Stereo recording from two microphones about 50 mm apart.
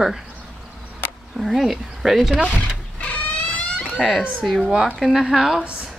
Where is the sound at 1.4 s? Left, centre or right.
Centre.